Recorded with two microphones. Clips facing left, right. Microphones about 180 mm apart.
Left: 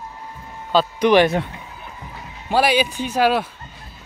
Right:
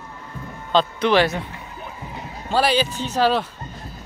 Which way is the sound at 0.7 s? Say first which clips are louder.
Left 3 dB; 10° left (ahead or behind).